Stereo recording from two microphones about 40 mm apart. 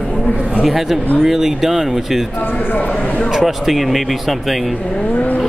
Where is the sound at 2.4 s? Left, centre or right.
Left.